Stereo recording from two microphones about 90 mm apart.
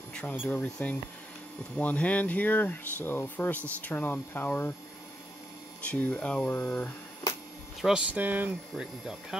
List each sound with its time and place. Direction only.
0.1 s air conditioning: 15° left (ahead or behind)
0.5 s speech: 15° left (ahead or behind)
5.9 s speech: 20° left (ahead or behind)
8.1 s speech: 20° right (ahead or behind)
8.7 s speech: 5° right (ahead or behind)